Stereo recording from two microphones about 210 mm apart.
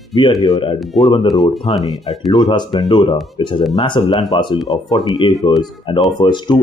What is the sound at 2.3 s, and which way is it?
Speech, 20° left (ahead or behind).